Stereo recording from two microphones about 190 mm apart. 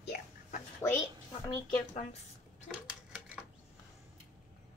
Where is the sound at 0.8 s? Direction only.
15° left (ahead or behind).